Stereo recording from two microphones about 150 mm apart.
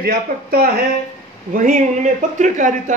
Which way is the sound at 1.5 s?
60° right (ahead or behind).